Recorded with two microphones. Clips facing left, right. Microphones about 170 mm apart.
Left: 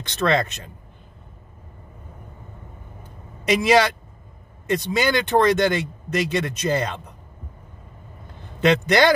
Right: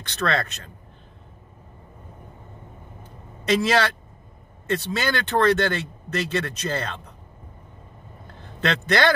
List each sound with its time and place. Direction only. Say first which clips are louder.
0.0 s a man's voice: left 4 dB; 20° left (ahead or behind)
3.4 s speech: left 3 dB; 15° left (ahead or behind)
8.5 s speech: left 5 dB; 15° left (ahead or behind)